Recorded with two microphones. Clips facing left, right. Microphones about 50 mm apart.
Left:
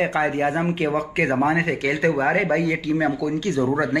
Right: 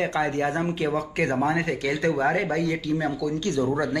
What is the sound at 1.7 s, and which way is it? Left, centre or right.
Speech, left.